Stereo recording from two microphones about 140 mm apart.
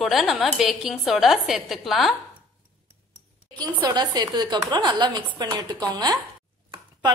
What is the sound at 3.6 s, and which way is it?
A woman's voice, 30° right (ahead or behind).